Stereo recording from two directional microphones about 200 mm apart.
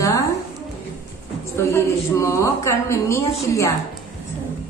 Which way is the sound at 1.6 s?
15° left (ahead or behind).